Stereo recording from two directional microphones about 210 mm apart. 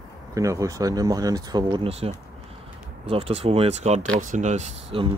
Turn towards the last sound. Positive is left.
turn(degrees=-30)  # may be behind; listen again after turning